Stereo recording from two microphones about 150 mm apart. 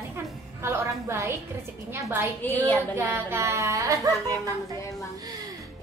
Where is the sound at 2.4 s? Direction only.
15° left (ahead or behind).